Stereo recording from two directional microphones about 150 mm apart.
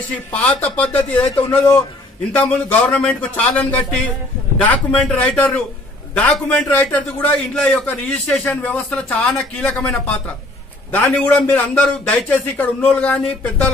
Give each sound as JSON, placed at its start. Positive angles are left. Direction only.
{"t": 0.3, "sound": "a man's voice", "side_deg": 10}
{"t": 2.3, "sound": "a man's voice", "side_deg": 10}